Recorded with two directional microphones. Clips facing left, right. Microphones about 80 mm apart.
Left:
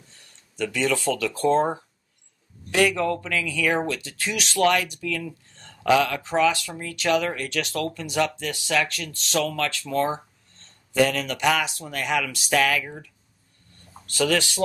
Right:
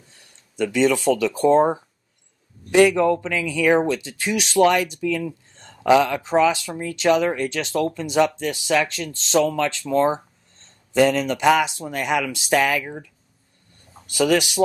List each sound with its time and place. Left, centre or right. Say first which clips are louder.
0.6 s speech: right 6 dB; centre